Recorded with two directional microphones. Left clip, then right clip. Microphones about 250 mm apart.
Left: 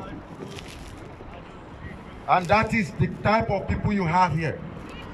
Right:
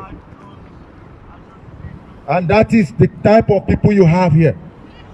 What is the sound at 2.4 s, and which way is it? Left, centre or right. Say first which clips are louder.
A man's voice: right 8 dB; right.